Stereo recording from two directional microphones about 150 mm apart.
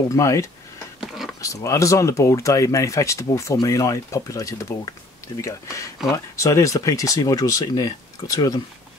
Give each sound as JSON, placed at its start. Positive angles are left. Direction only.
{"t": 0.1, "sound": "speech", "side_deg": 20}
{"t": 1.0, "sound": "a sound", "side_deg": 0}
{"t": 1.4, "sound": "speech", "side_deg": 20}